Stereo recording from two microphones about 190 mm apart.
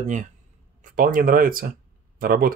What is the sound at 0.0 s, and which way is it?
Speech, 40° right (ahead or behind).